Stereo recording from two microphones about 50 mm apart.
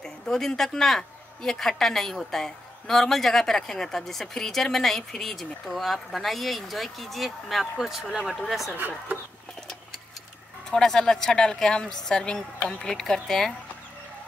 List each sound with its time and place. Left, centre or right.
0.0 s a woman's voice: centre
8.7 s speech: right
10.7 s a woman's voice: centre